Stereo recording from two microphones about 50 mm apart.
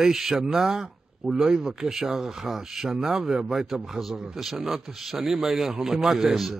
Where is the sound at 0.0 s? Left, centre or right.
Centre.